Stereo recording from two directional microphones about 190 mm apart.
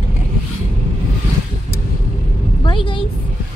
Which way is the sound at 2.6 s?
25° left (ahead or behind).